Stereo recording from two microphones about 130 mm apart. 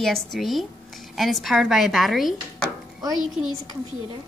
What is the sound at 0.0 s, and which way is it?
Speech, 5° left (ahead or behind).